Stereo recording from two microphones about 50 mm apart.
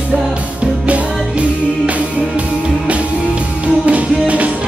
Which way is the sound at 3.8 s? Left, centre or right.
Right.